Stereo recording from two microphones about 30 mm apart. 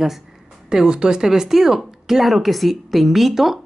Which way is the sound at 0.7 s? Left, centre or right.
Right.